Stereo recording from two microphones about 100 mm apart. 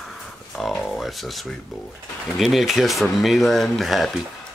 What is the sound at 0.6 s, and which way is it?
Speech, 5° left (ahead or behind).